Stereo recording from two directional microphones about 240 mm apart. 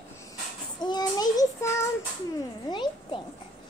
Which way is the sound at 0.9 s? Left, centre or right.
Centre.